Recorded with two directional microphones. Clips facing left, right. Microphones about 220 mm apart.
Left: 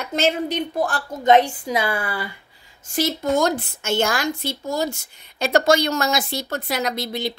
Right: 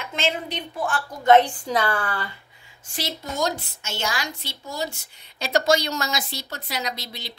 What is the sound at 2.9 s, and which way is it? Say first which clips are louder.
A woman's voice: left 9 dB; 50° left (ahead or behind).